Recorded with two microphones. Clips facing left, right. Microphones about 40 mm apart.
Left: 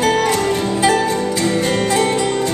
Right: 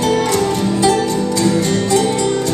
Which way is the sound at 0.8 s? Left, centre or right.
Left.